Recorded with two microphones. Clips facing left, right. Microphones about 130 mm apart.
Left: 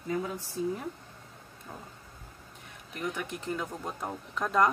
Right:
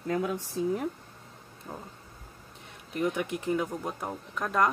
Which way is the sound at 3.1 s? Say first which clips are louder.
Right 6 dB; 15° right (ahead or behind).